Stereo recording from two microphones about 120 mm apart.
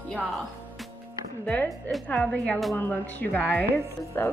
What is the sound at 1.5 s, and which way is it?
A woman's voice, 15° left (ahead or behind).